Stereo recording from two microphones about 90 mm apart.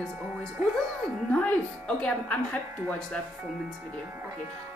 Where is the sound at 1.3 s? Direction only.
15° left (ahead or behind).